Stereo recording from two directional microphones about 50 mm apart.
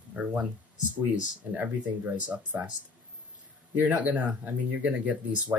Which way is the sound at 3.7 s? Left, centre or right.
Right.